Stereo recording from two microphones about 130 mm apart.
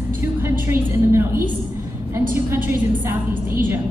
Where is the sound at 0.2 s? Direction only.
15° right (ahead or behind).